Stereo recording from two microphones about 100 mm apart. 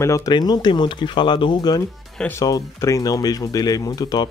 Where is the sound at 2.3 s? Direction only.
30° left (ahead or behind).